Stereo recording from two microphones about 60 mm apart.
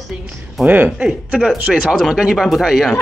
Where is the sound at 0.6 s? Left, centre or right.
Right.